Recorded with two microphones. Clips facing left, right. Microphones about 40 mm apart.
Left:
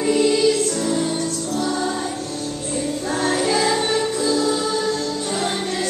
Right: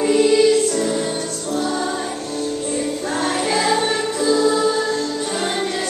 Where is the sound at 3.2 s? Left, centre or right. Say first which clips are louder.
Left 1 dB; right.